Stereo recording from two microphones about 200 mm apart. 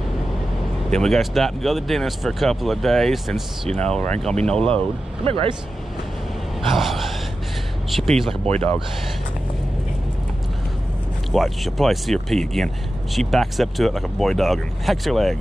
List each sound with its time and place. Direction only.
0.8 s speech: centre (ahead or behind)
5.2 s speech: 30° right (ahead or behind)
6.7 s speech: centre (ahead or behind)
11.3 s speech: centre (ahead or behind)